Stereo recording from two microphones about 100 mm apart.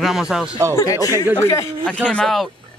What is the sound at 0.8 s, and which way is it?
Speech, 35° left (ahead or behind).